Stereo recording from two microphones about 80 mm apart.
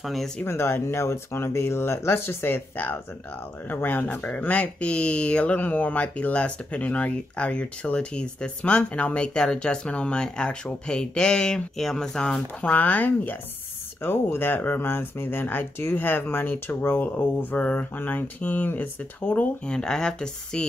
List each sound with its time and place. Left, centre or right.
0.0 s speech: centre
0.4 s speech: left; by 12.7 s centre
12.7 s speech: left